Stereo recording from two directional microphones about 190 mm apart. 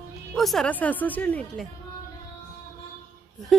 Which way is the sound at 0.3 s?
Centre (ahead or behind).